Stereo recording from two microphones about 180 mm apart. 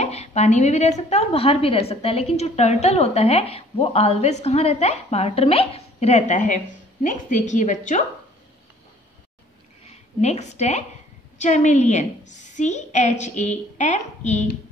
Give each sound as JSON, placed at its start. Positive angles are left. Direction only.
{"t": 0.0, "sound": "a woman's voice", "side_deg": 35}
{"t": 9.8, "sound": "a woman's voice", "side_deg": 35}